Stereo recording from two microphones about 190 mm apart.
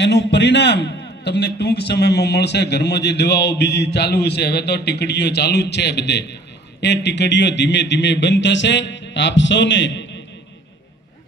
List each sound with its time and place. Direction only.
0.0 s a man's voice: 65° left (ahead or behind)